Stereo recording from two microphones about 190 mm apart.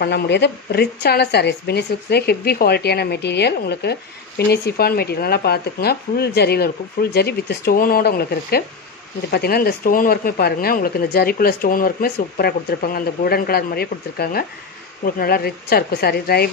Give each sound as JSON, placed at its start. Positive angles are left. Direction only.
{"t": 0.0, "sound": "speech", "side_deg": 60}